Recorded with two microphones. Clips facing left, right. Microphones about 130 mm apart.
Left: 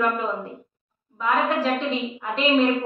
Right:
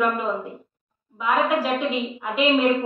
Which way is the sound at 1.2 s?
10° right (ahead or behind).